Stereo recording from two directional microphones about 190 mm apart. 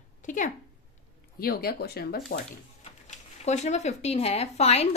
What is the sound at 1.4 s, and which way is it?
Speech, 55° left (ahead or behind).